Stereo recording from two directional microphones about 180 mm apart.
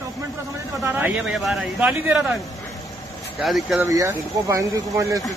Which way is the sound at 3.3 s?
Centre (ahead or behind).